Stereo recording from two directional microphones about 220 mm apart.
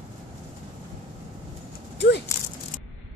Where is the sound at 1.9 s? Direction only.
50° left (ahead or behind).